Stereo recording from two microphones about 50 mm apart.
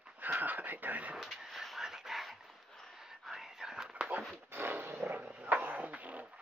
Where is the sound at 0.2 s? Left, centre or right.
Right.